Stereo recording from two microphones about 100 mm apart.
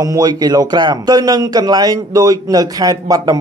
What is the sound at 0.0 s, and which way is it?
A man's voice, 40° right (ahead or behind).